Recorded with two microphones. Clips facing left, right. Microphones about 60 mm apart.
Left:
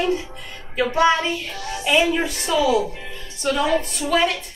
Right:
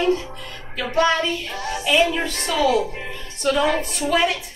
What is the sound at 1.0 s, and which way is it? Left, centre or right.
Child singing, centre.